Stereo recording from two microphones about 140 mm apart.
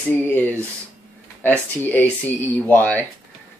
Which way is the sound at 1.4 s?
10° left (ahead or behind).